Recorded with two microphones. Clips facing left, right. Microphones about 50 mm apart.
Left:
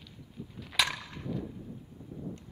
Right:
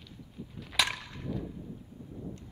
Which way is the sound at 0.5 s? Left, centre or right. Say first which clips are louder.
Even; centre.